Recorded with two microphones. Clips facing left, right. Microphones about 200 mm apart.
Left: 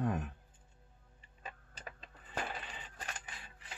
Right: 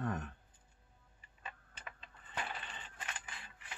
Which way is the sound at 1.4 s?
35° left (ahead or behind).